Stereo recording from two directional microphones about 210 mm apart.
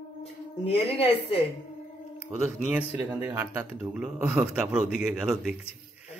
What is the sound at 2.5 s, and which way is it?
Speech, 5° right (ahead or behind).